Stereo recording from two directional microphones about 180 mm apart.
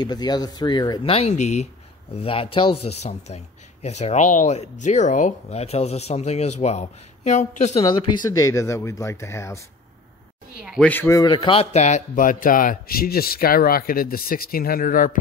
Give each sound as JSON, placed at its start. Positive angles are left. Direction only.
{"t": 0.0, "sound": "speech", "side_deg": 25}
{"t": 7.8, "sound": "speech", "side_deg": 25}
{"t": 10.8, "sound": "a man's voice", "side_deg": 10}